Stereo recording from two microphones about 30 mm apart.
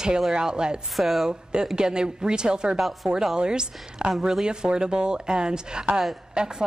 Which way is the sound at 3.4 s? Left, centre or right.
Right.